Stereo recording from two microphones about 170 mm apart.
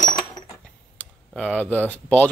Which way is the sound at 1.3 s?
5° left (ahead or behind).